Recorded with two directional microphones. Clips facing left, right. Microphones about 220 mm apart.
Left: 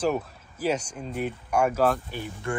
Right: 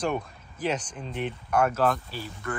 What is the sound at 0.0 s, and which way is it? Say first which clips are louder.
Speech: left 3 dB; 5° left (ahead or behind).